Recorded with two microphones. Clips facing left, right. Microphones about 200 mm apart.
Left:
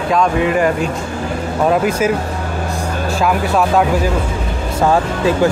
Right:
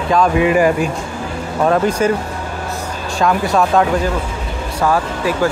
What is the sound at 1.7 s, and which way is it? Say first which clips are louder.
Speech: right 1 dB; 5° left (ahead or behind).